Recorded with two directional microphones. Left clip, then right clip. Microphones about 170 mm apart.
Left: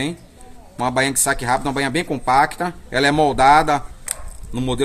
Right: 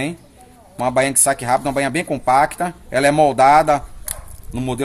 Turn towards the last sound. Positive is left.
turn(degrees=-25)  # may be behind; listen again after turning